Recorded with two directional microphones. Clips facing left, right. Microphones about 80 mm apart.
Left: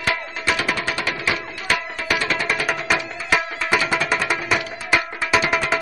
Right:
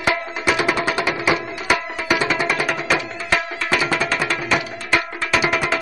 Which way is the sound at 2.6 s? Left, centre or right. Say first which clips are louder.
Right 1 dB; centre.